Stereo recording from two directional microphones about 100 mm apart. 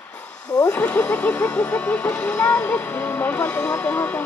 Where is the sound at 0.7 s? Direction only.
10° left (ahead or behind).